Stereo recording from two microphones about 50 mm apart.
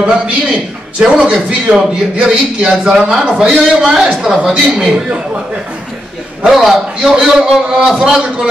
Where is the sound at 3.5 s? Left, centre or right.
Centre.